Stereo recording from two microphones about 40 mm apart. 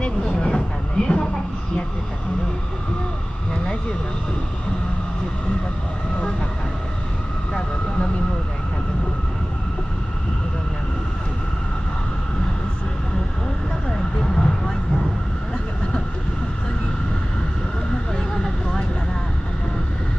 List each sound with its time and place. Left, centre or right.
0.4 s a sound: centre
13.8 s vehicle: centre
18.1 s vehicle: centre